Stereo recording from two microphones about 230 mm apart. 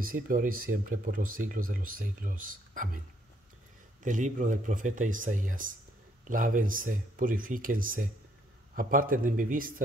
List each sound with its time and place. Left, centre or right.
0.0 s speech: right
4.0 s speech: right